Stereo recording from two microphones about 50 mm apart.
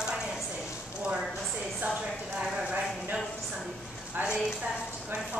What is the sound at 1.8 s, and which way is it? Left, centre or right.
Speech, centre.